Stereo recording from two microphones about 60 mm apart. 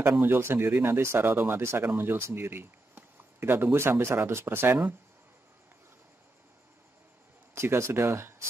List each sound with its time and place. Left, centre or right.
0.0 s speech: right
2.5 s speech: right
7.5 s speech: right